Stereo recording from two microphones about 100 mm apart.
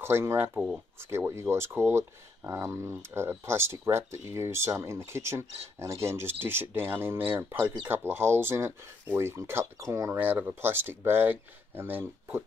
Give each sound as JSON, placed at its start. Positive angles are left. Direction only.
{"t": 0.0, "sound": "speech", "side_deg": -25}
{"t": 10.1, "sound": "speech", "side_deg": -15}